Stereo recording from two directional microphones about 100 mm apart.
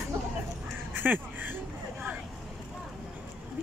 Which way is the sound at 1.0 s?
20° right (ahead or behind).